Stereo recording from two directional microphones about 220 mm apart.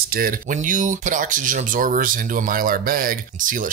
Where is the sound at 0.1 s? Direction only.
40° right (ahead or behind).